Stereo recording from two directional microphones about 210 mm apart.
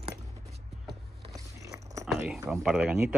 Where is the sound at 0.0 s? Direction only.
30° right (ahead or behind).